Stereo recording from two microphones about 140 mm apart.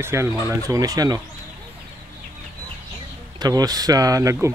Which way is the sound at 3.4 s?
25° right (ahead or behind).